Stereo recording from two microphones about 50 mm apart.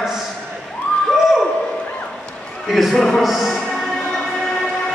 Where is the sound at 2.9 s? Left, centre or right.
Centre.